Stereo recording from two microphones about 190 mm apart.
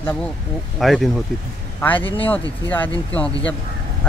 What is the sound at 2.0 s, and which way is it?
Speech, 30° left (ahead or behind).